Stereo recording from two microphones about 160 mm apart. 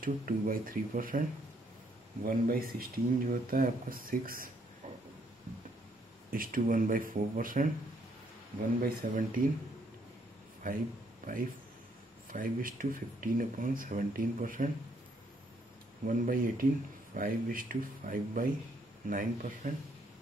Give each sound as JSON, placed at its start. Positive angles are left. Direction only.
{"t": 0.0, "sound": "speech", "side_deg": -60}
{"t": 2.2, "sound": "speech", "side_deg": -60}
{"t": 6.3, "sound": "speech", "side_deg": -60}
{"t": 8.8, "sound": "speech", "side_deg": -60}
{"t": 10.6, "sound": "speech", "side_deg": -60}
{"t": 12.3, "sound": "speech", "side_deg": -60}
{"t": 16.1, "sound": "speech", "side_deg": -60}